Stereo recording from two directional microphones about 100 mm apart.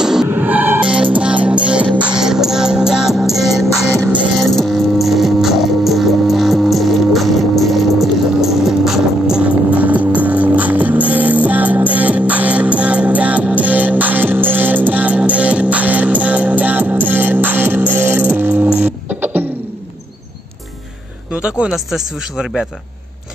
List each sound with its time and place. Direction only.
0.0 s music: 5° right (ahead or behind)
0.3 s music: 20° right (ahead or behind)
21.3 s speech: 10° right (ahead or behind)